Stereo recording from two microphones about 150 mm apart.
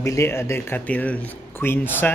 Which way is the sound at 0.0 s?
20° left (ahead or behind).